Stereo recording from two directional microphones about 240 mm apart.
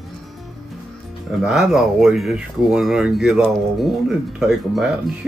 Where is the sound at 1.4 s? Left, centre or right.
Centre.